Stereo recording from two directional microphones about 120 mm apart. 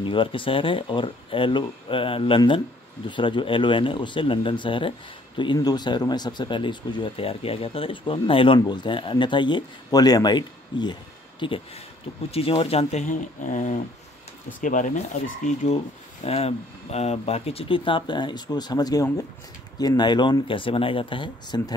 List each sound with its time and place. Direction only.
0.0 s speech: 45° left (ahead or behind)
12.3 s speech: 55° left (ahead or behind); by 14.9 s 90° left
15.4 s speech: 80° left
16.3 s speech: 55° left (ahead or behind); by 21.7 s 40° left (ahead or behind)